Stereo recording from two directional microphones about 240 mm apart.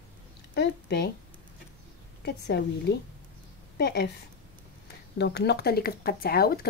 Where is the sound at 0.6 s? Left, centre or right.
Left.